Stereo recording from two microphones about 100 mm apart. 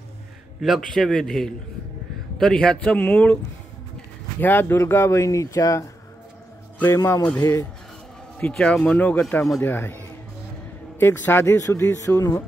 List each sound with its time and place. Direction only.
0.6 s a man's voice: centre (ahead or behind)
4.4 s speech: 20° left (ahead or behind)
7.0 s speech: 35° left (ahead or behind)
8.4 s speech: 10° left (ahead or behind)